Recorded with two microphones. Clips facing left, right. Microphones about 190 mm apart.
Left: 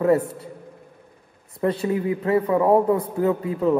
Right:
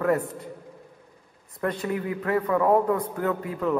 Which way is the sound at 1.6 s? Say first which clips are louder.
Left 5 dB; 25° left (ahead or behind).